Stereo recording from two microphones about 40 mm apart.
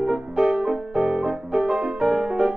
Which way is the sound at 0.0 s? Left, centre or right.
Centre.